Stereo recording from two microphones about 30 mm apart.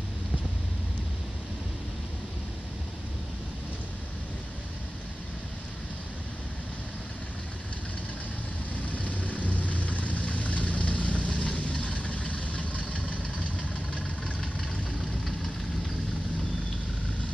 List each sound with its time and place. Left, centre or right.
8.8 s vehicle: left